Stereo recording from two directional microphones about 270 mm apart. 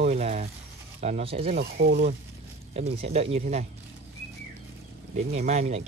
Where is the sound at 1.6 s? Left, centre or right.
Right.